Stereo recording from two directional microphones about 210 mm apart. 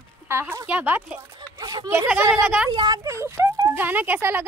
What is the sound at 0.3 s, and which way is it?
Speech, 10° right (ahead or behind).